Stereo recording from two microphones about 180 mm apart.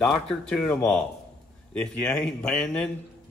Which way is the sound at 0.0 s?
5° left (ahead or behind).